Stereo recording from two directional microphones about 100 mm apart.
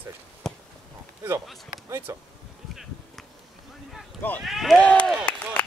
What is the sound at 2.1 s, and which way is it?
Speech, 30° right (ahead or behind).